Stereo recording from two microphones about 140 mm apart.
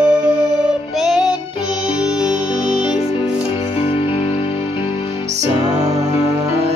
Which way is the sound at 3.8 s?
40° left (ahead or behind).